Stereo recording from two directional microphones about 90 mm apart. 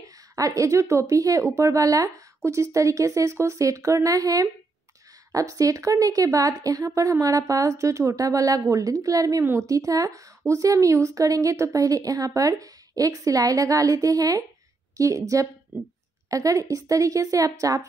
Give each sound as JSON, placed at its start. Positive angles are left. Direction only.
{"t": 0.0, "sound": "speech", "side_deg": -40}